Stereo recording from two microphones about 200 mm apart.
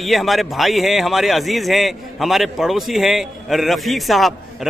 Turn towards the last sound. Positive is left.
turn(degrees=0)  # may be behind; listen again after turning